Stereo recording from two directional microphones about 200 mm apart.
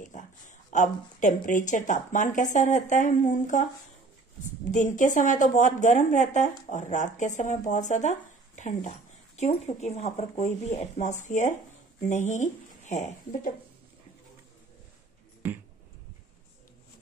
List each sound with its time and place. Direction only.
0.7 s a woman's voice: 40° left (ahead or behind)
4.7 s a woman's voice: 40° left (ahead or behind)